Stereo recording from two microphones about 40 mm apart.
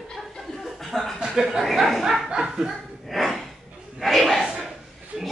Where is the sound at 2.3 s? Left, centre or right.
Centre.